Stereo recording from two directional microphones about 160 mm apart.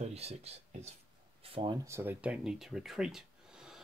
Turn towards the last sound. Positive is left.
turn(degrees=-5)  # may be behind; listen again after turning